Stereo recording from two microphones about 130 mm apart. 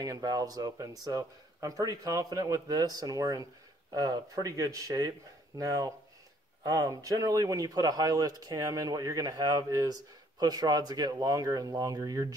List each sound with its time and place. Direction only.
0.0 s speech: 30° right (ahead or behind)